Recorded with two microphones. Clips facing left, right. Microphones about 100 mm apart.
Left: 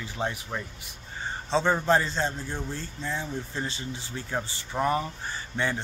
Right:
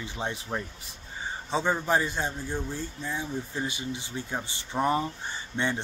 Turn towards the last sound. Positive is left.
turn(degrees=-20)  # may be behind; listen again after turning